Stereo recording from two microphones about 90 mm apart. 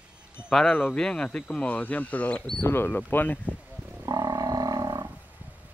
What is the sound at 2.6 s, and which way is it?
Speech, 25° left (ahead or behind).